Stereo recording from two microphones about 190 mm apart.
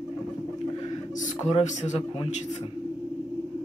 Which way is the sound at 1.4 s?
35° left (ahead or behind).